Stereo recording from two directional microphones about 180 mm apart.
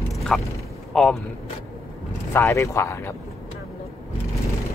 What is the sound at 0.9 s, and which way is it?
Speech, centre (ahead or behind).